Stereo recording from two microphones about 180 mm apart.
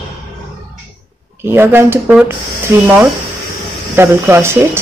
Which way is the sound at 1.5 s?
10° right (ahead or behind).